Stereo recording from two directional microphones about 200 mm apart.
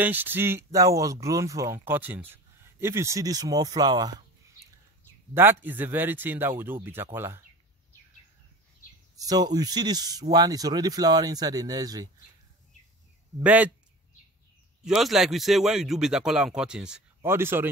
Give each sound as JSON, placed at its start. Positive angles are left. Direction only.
{"t": 0.0, "sound": "speech", "side_deg": -10}
{"t": 5.3, "sound": "speech", "side_deg": -10}
{"t": 9.1, "sound": "speech", "side_deg": -20}
{"t": 13.4, "sound": "speech", "side_deg": -5}
{"t": 14.9, "sound": "speech", "side_deg": 0}